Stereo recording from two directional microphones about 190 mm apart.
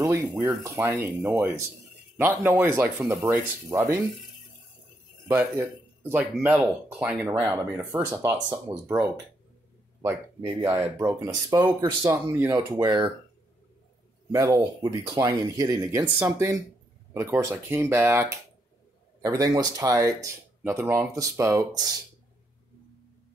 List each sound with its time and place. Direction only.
0.0 s speech: 10° right (ahead or behind)
5.3 s a man's voice: 10° right (ahead or behind)
10.6 s speech: 15° right (ahead or behind)
14.3 s speech: 15° right (ahead or behind)